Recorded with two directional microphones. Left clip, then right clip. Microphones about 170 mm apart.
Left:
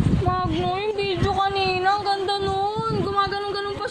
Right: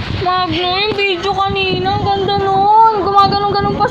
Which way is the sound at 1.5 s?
45° left (ahead or behind).